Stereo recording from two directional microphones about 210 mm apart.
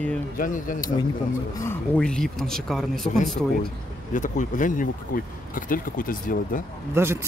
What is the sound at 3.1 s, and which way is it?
Speech, 35° left (ahead or behind).